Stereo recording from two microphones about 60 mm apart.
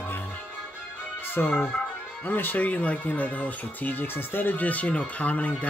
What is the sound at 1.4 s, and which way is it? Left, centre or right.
Speech, left.